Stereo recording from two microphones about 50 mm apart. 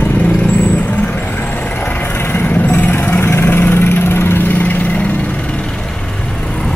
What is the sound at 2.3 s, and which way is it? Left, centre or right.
Vehicle, left.